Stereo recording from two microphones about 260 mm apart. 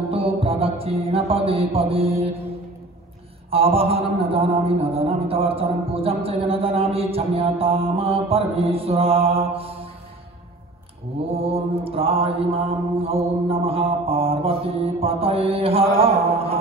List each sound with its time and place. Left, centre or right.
0.1 s music: right
3.4 s mantra: right
11.4 s mantra: right